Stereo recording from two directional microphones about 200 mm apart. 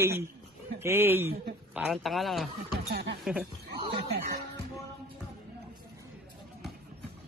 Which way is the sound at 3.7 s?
50° right (ahead or behind).